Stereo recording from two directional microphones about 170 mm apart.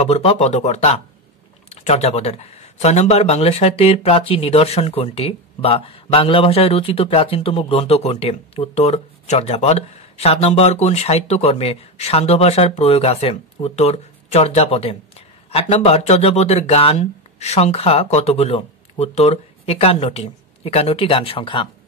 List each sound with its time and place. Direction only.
0.0 s speech: 35° left (ahead or behind)